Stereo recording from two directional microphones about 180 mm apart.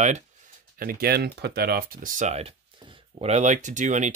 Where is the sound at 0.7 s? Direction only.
55° right (ahead or behind).